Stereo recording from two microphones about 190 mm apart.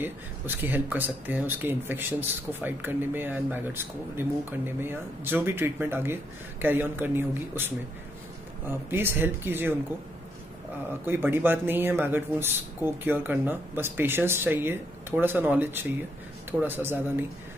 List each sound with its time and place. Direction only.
0.7 s speech: 10° right (ahead or behind)
11.1 s speech: 10° right (ahead or behind)